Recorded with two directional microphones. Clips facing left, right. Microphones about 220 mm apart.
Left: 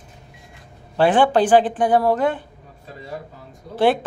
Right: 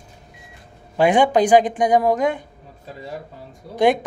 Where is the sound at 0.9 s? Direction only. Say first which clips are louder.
Even; 10° right (ahead or behind).